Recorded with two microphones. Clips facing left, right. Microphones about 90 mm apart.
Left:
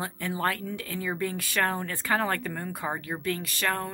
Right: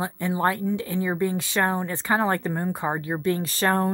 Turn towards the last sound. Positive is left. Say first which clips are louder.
# right 7 dB
turn(degrees=-35)  # may be behind; listen again after turning